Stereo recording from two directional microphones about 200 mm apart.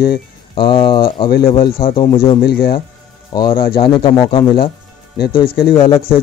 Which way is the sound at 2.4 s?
50° left (ahead or behind).